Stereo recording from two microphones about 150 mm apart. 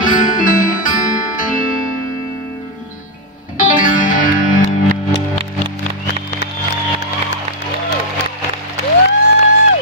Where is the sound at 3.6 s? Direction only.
60° left (ahead or behind).